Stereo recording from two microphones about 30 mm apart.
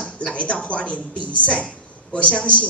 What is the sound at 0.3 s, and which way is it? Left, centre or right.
A woman's voice, left.